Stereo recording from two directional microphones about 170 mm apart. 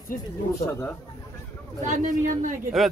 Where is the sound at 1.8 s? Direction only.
50° right (ahead or behind).